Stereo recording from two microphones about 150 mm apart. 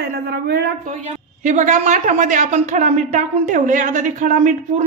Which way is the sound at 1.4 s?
55° right (ahead or behind).